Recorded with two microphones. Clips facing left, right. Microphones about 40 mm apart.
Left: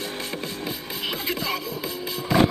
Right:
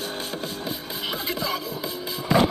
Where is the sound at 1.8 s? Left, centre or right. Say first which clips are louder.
Left 1 dB; left.